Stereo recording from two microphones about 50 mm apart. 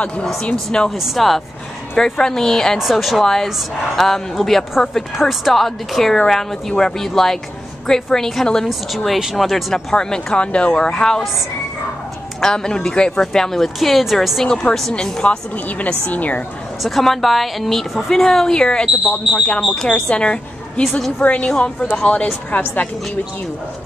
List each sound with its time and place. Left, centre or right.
0.2 s speech: centre
0.9 s speech: centre
2.8 s speech: centre
8.6 s speech: centre
9.9 s speech: centre
12.4 s speech: centre
14.4 s speech: centre
15.5 s a woman's voice: left
16.8 s a woman's voice: centre; by 22.8 s left